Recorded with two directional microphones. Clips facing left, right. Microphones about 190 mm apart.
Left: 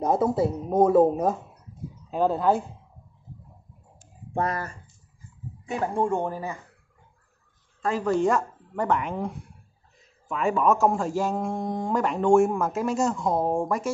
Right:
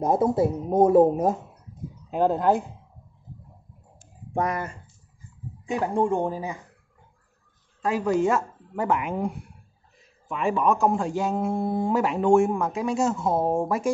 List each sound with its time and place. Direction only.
0.0 s speech: 15° right (ahead or behind)
4.3 s speech: 15° right (ahead or behind)
7.8 s speech: 10° right (ahead or behind)